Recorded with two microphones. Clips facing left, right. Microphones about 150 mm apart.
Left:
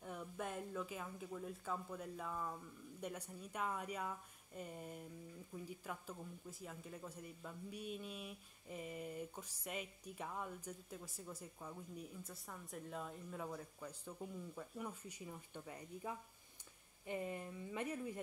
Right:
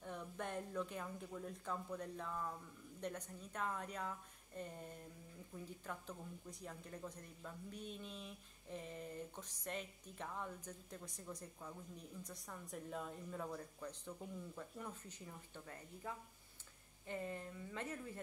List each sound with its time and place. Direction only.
0.0 s speech: 5° left (ahead or behind)